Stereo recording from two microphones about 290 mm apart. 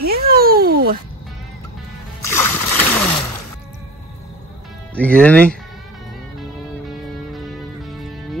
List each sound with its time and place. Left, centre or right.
0.0 s a sound: right
2.2 s splash: centre
4.9 s speech: centre
6.9 s music: centre